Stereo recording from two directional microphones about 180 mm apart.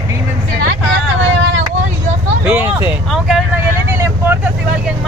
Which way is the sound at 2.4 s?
10° right (ahead or behind).